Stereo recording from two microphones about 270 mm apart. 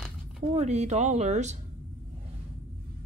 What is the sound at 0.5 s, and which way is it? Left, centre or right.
Speech, right.